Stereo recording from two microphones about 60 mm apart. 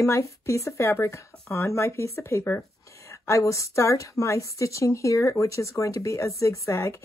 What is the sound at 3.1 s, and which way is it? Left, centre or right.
Speech, left.